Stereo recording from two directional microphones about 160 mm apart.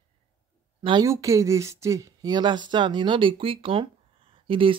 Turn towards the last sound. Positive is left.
turn(degrees=-35)  # may be behind; listen again after turning